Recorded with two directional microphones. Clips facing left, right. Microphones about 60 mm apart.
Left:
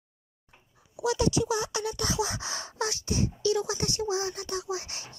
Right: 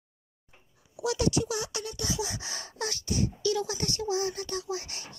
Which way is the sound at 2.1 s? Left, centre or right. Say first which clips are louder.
Left 4 dB; left.